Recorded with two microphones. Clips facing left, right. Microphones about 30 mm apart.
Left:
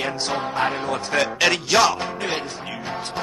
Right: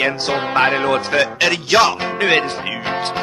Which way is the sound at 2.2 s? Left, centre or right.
Right.